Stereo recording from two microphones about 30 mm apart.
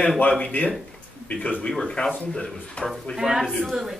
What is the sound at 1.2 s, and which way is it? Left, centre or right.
Speech, left.